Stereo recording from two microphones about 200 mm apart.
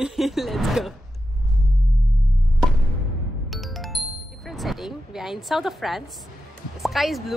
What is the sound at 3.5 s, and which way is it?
Music, centre (ahead or behind).